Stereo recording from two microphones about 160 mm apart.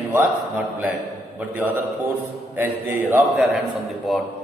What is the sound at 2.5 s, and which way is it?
Speech, 15° right (ahead or behind).